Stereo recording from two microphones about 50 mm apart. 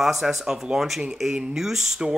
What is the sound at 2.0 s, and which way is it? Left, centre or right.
Speech, centre.